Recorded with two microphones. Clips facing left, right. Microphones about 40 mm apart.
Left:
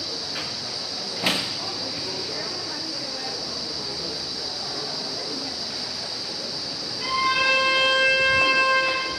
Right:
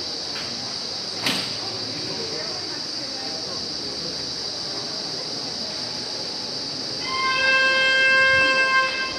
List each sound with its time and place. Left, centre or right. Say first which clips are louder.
7.2 s shofar: right 1 dB; centre